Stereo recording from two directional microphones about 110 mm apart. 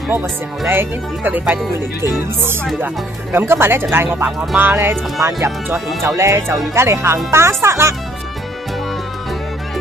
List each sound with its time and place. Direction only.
0.7 s speech: 20° right (ahead or behind)
2.8 s speech: 20° right (ahead or behind)